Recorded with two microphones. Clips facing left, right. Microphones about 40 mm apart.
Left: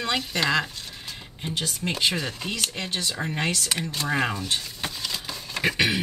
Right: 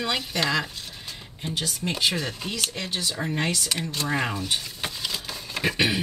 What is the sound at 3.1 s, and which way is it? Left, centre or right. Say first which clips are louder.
Speech: right 1 dB; centre.